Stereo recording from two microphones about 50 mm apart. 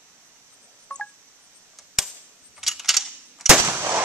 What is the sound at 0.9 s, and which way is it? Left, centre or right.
Telephone dialing, left.